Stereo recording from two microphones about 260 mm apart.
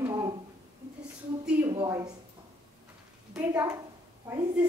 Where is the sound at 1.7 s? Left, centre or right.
Centre.